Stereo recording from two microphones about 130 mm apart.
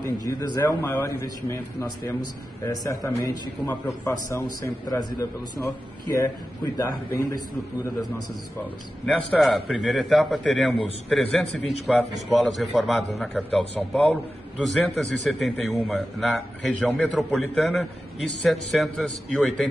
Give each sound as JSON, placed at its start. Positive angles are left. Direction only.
{"t": 0.2, "sound": "a man's voice", "side_deg": 25}
{"t": 9.0, "sound": "a man's voice", "side_deg": 0}